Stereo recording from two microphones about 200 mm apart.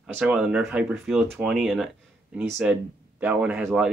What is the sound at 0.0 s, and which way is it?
Speech, 5° right (ahead or behind).